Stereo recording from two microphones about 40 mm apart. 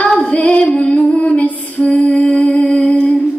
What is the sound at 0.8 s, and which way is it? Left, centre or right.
Music, left.